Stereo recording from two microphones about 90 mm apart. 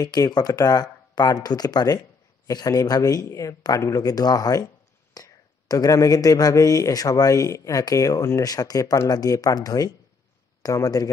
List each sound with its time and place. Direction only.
0.0 s speech: 50° left (ahead or behind)